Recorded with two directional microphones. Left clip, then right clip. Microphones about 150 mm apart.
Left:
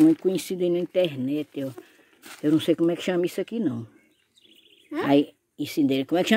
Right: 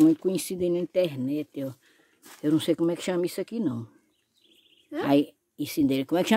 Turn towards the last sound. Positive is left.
turn(degrees=-5)  # may be behind; listen again after turning